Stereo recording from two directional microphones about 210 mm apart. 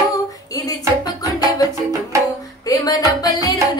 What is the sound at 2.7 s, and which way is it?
Music, 20° left (ahead or behind).